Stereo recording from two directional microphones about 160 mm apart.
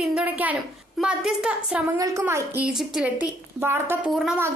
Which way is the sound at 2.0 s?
20° right (ahead or behind).